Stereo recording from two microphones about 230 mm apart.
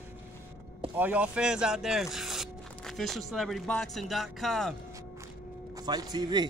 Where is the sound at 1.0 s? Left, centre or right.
Centre.